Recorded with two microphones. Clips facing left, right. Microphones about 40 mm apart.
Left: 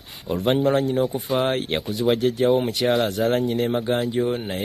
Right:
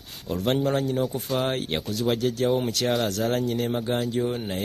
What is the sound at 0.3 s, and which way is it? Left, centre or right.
Speech, centre.